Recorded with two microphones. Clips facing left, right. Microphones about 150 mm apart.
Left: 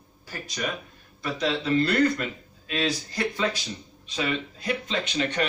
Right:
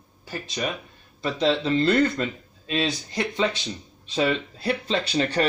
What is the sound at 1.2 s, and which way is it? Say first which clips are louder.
Speech: right 4 dB; 25° right (ahead or behind).